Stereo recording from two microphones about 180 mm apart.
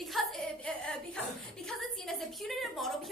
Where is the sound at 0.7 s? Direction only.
5° left (ahead or behind).